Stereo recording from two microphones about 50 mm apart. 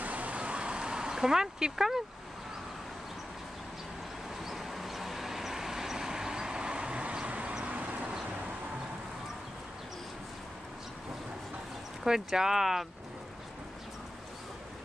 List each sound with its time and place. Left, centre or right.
0.0 s a sound: right; by 2.0 s centre
4.4 s vehicle: centre; by 7.9 s right
12.0 s speech: centre